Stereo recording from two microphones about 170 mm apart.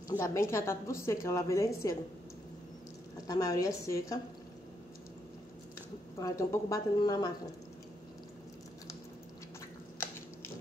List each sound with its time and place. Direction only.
0.2 s a woman's voice: 15° left (ahead or behind)
3.3 s a woman's voice: 20° left (ahead or behind)
6.1 s a woman's voice: 20° left (ahead or behind)